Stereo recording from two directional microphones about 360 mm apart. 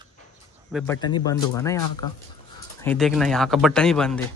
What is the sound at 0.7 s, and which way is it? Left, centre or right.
Speech, centre.